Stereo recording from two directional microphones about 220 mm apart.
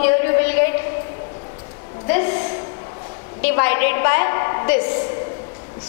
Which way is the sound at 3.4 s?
15° left (ahead or behind).